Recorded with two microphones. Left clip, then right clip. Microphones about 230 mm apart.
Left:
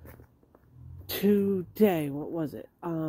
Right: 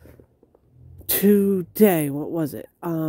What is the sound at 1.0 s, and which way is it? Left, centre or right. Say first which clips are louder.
Speech: right 7 dB; right.